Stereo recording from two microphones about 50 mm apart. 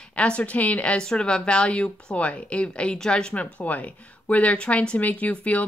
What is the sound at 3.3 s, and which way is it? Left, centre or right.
Speech, left.